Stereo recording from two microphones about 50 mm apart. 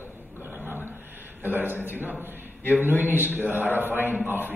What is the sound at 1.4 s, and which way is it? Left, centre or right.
A man's voice, right.